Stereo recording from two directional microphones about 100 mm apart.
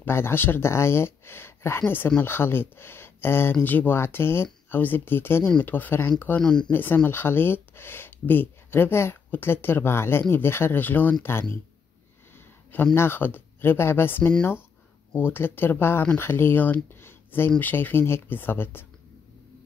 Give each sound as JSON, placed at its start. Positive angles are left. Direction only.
{"t": 0.0, "sound": "speech", "side_deg": 25}
{"t": 6.4, "sound": "speech", "side_deg": 5}
{"t": 6.7, "sound": "speech", "side_deg": 20}
{"t": 12.9, "sound": "speech", "side_deg": 25}